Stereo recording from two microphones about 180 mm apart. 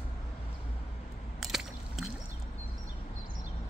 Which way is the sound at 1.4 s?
Centre (ahead or behind).